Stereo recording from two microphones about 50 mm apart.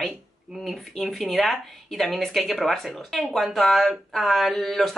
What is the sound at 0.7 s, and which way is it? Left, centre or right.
Speech, centre.